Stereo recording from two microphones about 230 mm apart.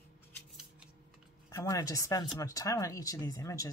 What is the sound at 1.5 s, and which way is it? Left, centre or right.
Speech, centre.